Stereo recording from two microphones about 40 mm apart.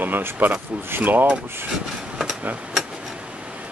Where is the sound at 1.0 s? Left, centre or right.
Right.